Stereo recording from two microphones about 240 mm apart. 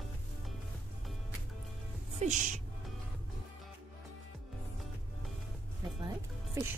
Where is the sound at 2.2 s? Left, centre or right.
Right.